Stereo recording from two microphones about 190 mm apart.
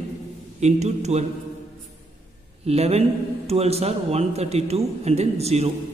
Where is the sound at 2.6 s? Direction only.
35° right (ahead or behind).